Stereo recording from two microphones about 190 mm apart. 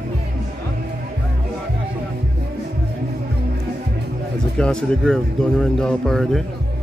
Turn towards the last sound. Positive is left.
turn(degrees=0)  # may be behind; listen again after turning